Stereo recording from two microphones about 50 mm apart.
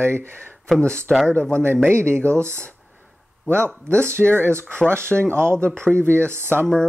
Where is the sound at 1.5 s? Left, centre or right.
Right.